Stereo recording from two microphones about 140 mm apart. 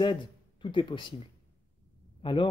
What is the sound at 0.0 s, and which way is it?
Speech, 35° left (ahead or behind).